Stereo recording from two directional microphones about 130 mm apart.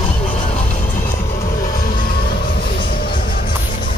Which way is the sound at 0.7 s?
90° left.